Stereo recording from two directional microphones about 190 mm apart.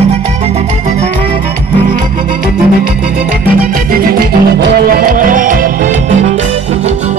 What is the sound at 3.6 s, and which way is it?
Music, 50° right (ahead or behind).